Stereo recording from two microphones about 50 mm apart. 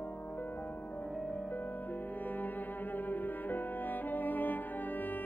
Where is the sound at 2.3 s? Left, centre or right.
Left.